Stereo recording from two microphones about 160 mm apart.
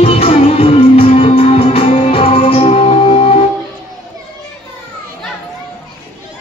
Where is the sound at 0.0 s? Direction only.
40° left (ahead or behind).